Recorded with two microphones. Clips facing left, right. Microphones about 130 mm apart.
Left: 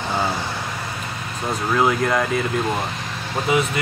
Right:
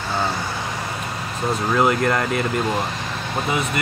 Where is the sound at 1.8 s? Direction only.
Centre (ahead or behind).